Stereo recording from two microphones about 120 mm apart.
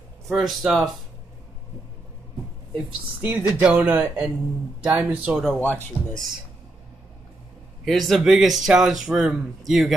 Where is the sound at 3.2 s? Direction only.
15° right (ahead or behind).